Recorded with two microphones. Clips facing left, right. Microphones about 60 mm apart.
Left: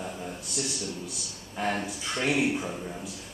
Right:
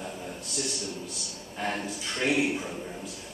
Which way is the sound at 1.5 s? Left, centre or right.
Centre.